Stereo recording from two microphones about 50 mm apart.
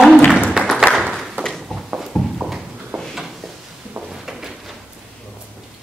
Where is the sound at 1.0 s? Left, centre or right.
Centre.